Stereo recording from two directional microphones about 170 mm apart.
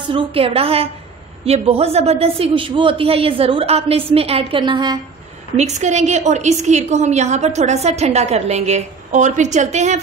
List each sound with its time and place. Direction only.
0.1 s a woman's voice: 35° right (ahead or behind)
5.6 s a woman's voice: 45° right (ahead or behind)